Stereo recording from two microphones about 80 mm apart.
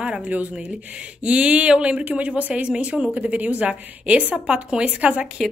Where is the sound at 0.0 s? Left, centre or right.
Centre.